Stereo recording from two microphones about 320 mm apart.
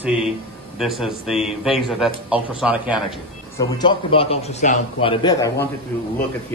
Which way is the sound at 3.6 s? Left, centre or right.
Centre.